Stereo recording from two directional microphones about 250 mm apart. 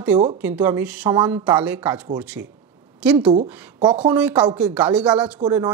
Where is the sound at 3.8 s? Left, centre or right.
Centre.